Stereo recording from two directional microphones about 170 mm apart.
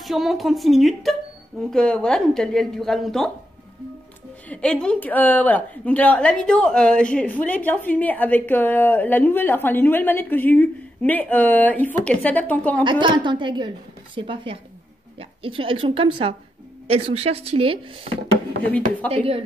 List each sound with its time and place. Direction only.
0.0 s a woman's voice: centre (ahead or behind)
4.5 s a woman's voice: 5° left (ahead or behind)
13.0 s a woman's voice: 25° right (ahead or behind)
18.7 s a woman's voice: 10° left (ahead or behind)
19.1 s speech: 35° right (ahead or behind)